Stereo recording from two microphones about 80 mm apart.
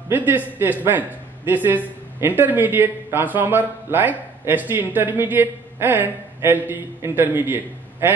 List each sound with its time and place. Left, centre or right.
0.1 s speech: right